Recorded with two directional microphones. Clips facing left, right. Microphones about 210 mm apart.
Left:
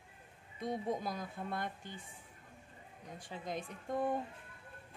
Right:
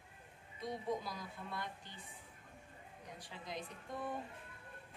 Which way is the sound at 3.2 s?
50° left (ahead or behind).